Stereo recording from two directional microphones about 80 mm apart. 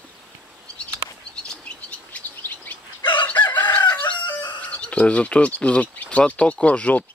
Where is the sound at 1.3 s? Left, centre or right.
Centre.